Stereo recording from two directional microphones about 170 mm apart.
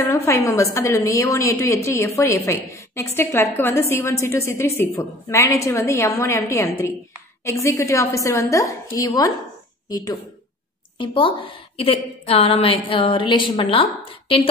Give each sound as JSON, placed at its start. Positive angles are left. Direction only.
{"t": 0.0, "sound": "a woman's voice", "side_deg": 15}